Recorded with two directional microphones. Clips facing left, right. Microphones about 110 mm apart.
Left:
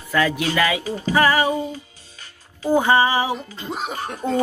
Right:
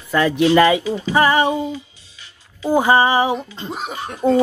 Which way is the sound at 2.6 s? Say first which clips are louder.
Right 2 dB; 15° right (ahead or behind).